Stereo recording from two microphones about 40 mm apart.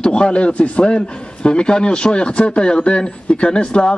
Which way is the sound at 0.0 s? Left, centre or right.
Left.